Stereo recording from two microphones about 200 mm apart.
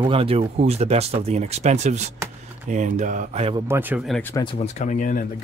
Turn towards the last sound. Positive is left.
turn(degrees=40)  # may be behind; listen again after turning